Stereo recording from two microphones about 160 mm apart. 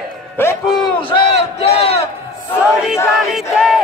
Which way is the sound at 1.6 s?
35° left (ahead or behind).